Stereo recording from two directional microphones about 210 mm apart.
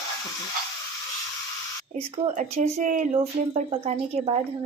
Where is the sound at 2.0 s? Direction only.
35° right (ahead or behind).